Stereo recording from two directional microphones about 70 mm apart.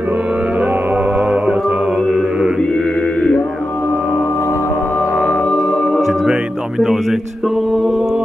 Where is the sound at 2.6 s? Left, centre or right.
Centre.